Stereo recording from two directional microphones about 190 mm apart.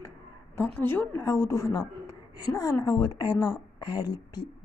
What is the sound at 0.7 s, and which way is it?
A woman's voice, 10° left (ahead or behind).